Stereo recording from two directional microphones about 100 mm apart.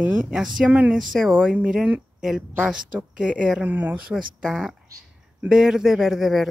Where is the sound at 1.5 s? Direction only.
10° right (ahead or behind).